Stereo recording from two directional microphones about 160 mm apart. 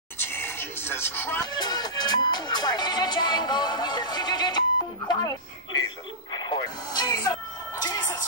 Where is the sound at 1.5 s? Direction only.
25° left (ahead or behind).